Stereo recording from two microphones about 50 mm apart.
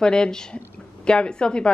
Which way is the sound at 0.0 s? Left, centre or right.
Centre.